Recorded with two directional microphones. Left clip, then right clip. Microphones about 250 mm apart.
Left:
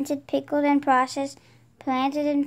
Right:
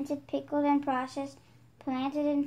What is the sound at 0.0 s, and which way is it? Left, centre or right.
A woman's voice, left.